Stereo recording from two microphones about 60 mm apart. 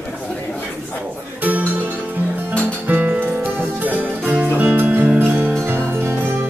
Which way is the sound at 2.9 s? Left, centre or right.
Right.